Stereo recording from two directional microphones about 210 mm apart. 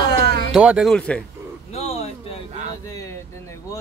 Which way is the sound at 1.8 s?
30° left (ahead or behind).